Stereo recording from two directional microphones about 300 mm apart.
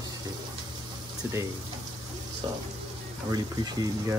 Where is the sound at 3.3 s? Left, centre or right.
Centre.